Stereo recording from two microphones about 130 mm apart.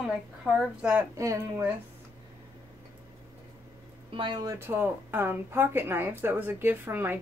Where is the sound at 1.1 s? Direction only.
25° right (ahead or behind).